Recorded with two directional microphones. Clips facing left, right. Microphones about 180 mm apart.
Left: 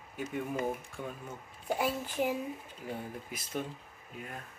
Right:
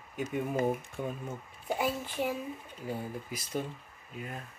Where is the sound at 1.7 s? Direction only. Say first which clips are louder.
Even; 10° left (ahead or behind).